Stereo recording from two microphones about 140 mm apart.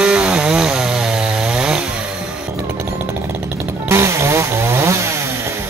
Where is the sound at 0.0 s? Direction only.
10° right (ahead or behind).